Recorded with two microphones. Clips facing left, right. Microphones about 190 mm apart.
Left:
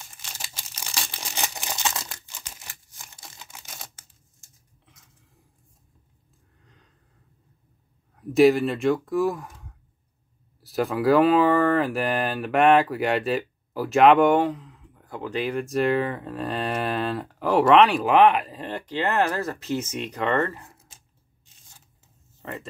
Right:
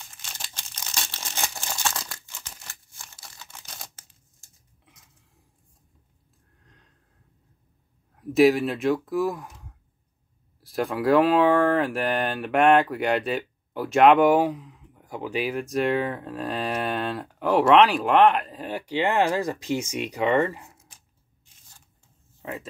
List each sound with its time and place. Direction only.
0.0 s crumpling: 5° left (ahead or behind)
3.5 s camera: 5° left (ahead or behind)
6.6 s a sound: centre (ahead or behind)
8.2 s speech: centre (ahead or behind)
22.4 s speech: centre (ahead or behind)